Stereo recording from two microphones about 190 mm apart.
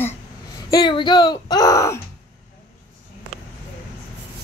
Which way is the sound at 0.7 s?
25° left (ahead or behind).